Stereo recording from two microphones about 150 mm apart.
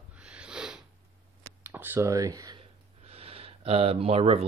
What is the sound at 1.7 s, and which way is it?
Speech, 15° right (ahead or behind).